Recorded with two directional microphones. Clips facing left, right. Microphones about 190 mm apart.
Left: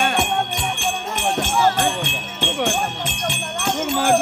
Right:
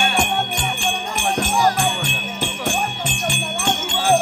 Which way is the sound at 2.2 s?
10° right (ahead or behind).